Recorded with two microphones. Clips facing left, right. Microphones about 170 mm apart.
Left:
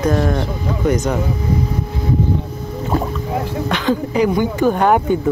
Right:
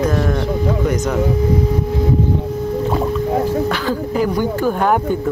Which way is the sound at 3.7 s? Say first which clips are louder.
Left 1 dB; 5° right (ahead or behind).